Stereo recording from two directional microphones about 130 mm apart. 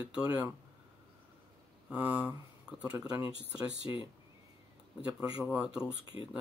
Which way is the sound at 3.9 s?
20° right (ahead or behind).